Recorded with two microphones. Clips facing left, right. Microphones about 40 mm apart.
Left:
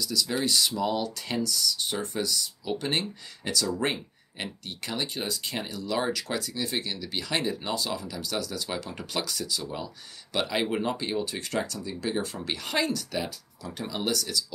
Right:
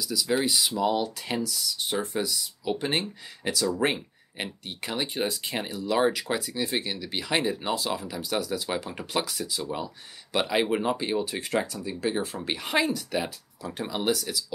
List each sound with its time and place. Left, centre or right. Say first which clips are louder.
0.0 s speech: right 2 dB; centre